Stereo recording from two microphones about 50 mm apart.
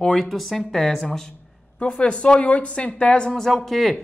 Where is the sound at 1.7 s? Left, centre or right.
Left.